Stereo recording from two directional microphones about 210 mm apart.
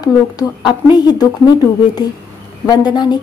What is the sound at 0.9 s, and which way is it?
A woman's voice, 20° left (ahead or behind).